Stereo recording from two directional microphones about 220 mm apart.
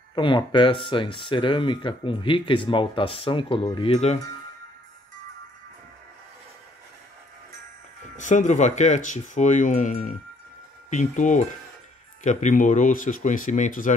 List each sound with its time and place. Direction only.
0.1 s speech: 20° left (ahead or behind)
8.2 s speech: 35° left (ahead or behind)